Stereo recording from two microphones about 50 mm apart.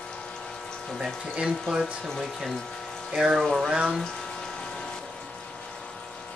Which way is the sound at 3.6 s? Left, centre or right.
Right.